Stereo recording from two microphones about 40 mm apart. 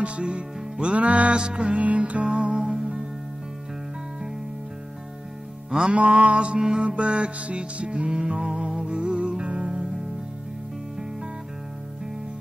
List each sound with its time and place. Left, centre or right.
0.0 s music: right
0.9 s music: right
1.4 s music: right
5.9 s music: right